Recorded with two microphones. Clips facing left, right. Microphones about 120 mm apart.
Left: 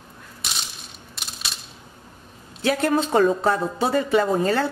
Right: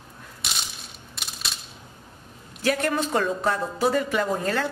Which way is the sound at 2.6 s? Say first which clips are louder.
Left 3 dB; 30° left (ahead or behind).